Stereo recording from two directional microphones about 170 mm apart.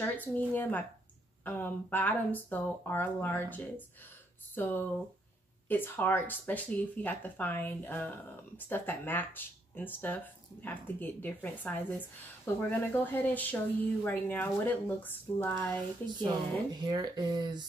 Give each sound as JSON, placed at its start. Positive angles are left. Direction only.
{"t": 0.0, "sound": "speech", "side_deg": 10}
{"t": 16.8, "sound": "speech", "side_deg": -25}